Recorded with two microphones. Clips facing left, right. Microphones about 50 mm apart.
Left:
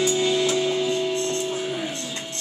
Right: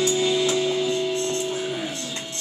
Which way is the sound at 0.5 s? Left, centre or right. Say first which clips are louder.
Even; centre.